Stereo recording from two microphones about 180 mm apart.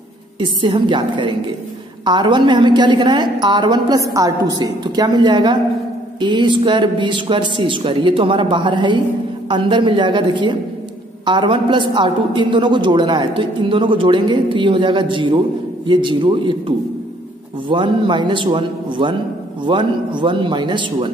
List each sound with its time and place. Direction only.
0.4 s a woman's voice: 25° right (ahead or behind)